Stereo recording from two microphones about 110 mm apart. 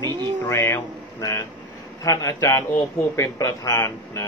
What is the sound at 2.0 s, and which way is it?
A man's voice, 30° left (ahead or behind).